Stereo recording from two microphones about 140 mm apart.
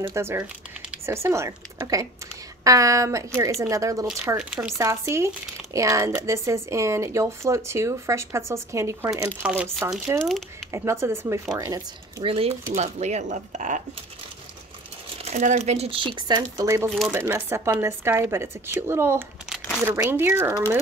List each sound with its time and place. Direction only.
0.0 s speech: 20° right (ahead or behind)
12.3 s speech: 45° right (ahead or behind); by 13.8 s 60° right (ahead or behind)
15.2 s speech: 60° right (ahead or behind); by 16.6 s 30° right (ahead or behind)
16.6 s speech: 20° right (ahead or behind)